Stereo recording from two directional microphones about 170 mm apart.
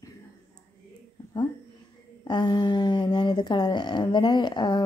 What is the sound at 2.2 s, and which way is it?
Speech, 25° left (ahead or behind).